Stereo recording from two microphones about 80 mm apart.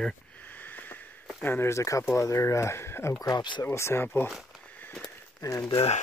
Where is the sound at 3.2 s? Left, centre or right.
Left.